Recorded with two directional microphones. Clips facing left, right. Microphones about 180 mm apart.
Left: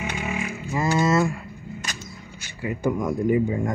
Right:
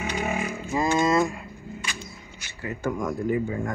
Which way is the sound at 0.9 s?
15° right (ahead or behind).